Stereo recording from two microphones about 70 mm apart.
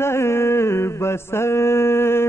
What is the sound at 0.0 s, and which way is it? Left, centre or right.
Mantra, left.